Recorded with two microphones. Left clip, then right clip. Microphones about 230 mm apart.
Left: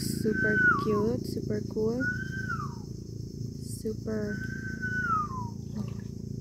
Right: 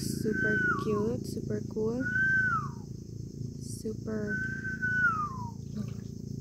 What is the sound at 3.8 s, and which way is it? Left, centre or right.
Speech, centre.